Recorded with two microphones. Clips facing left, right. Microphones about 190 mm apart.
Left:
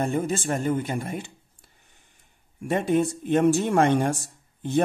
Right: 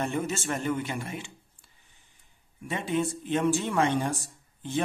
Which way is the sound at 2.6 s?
45° left (ahead or behind).